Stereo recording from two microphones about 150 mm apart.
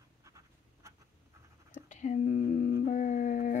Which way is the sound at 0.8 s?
20° right (ahead or behind).